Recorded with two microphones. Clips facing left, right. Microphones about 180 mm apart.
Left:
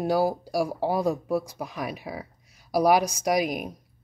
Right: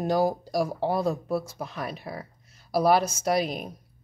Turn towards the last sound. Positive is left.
turn(degrees=10)  # may be behind; listen again after turning